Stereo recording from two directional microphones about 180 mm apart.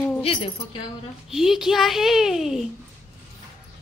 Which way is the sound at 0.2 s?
30° left (ahead or behind).